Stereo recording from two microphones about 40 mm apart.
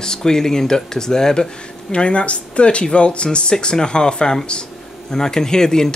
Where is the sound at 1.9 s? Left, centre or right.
Left.